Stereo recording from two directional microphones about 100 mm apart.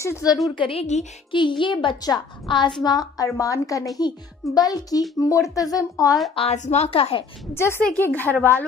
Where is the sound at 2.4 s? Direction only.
50° left (ahead or behind).